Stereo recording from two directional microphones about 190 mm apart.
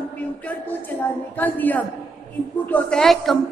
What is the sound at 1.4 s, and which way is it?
A woman's voice, 10° left (ahead or behind).